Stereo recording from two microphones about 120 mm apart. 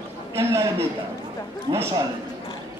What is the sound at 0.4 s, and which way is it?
A man's voice, 20° right (ahead or behind).